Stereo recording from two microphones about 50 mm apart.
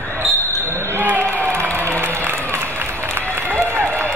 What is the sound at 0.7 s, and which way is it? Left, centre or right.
Basketball bounce, right.